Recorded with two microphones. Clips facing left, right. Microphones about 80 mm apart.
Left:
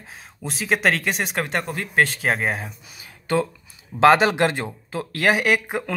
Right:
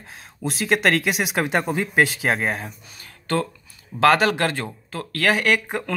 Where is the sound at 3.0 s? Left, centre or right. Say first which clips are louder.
Left 2 dB; centre.